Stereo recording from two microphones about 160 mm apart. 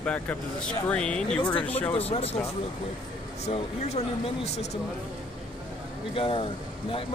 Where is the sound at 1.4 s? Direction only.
30° left (ahead or behind).